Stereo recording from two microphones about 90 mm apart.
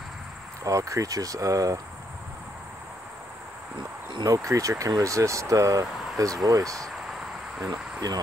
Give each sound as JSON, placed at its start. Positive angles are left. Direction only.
{"t": 0.7, "sound": "speech", "side_deg": -35}
{"t": 4.3, "sound": "speech", "side_deg": -40}
{"t": 7.7, "sound": "cricket", "side_deg": -50}